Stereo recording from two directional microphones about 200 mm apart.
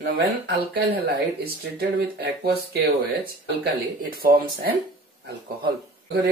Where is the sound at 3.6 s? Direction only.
45° right (ahead or behind).